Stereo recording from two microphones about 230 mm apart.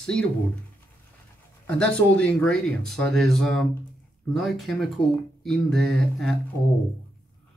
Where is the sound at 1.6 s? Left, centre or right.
Centre.